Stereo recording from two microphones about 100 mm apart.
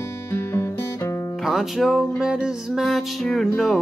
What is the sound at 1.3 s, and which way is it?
Music, centre (ahead or behind).